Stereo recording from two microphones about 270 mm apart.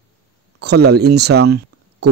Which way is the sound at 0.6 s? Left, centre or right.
Right.